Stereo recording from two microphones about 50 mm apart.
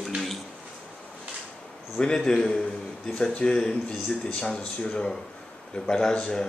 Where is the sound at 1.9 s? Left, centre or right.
Centre.